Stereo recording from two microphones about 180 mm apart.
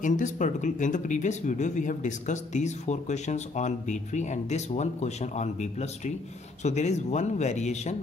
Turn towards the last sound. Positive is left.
turn(degrees=40)  # may be behind; listen again after turning